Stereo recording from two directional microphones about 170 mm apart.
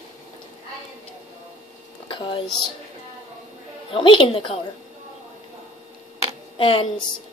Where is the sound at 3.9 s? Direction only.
30° left (ahead or behind).